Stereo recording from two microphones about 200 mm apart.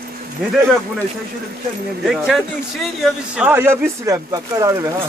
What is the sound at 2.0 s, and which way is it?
A man's voice, centre (ahead or behind).